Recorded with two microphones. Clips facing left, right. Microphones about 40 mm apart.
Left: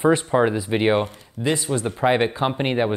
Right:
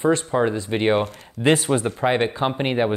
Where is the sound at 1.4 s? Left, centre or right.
Right.